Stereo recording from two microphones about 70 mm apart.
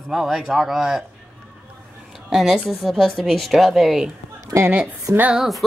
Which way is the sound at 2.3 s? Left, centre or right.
Centre.